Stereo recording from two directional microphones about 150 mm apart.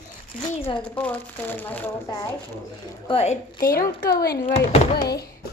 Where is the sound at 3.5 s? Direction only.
75° left (ahead or behind).